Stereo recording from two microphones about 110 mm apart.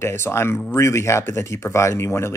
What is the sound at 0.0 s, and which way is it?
Speech, 20° left (ahead or behind).